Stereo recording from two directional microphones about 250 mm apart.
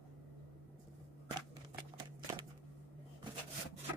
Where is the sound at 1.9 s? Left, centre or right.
Centre.